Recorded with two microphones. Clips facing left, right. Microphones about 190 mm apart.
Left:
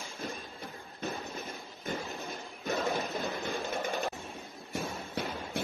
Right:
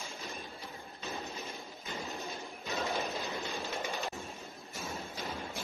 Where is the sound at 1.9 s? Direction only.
55° left (ahead or behind).